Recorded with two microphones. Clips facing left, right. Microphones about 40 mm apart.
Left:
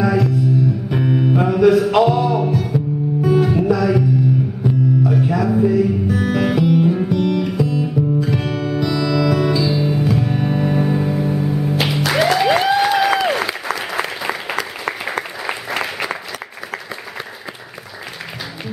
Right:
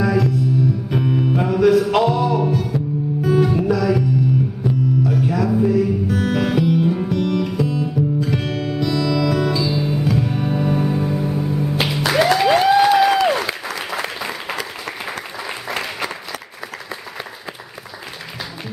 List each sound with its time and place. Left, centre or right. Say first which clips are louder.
0.0 s music: left 1 dB; centre
11.7 s music: right 1 dB; centre
14.9 s applause: left 5 dB; centre